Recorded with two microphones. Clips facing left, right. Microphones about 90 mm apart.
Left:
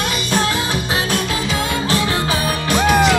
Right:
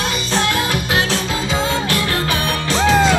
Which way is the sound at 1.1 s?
25° right (ahead or behind).